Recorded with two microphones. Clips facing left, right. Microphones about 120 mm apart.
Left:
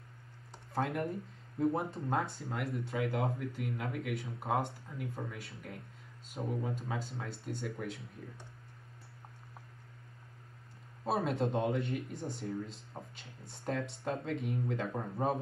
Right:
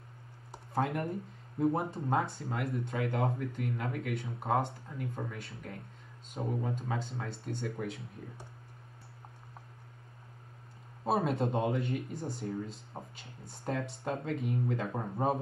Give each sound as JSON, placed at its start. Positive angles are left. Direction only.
{"t": 0.7, "sound": "speech", "side_deg": 0}
{"t": 11.1, "sound": "speech", "side_deg": 0}
{"t": 14.9, "sound": "speech", "side_deg": -20}